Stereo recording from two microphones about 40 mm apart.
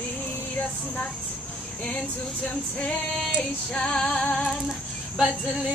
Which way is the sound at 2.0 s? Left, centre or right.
Left.